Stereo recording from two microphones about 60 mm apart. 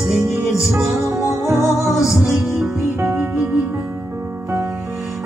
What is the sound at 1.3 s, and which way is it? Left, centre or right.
Music, right.